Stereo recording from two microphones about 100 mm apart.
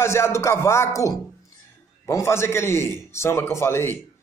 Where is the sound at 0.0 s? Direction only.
30° left (ahead or behind).